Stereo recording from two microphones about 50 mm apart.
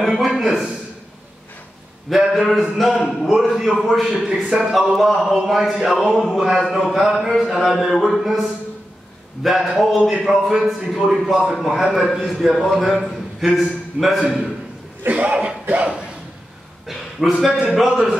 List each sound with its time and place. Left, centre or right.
0.0 s a sound: centre
0.4 s a man's voice: centre
2.0 s a man's voice: centre
15.0 s speech: right
16.8 s a sound: centre
17.5 s a man's voice: centre
17.7 s a man's voice: centre